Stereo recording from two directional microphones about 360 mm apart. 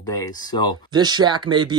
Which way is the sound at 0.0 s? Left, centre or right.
Centre.